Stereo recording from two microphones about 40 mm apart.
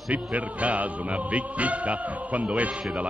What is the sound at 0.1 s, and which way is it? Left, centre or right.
Speech, right.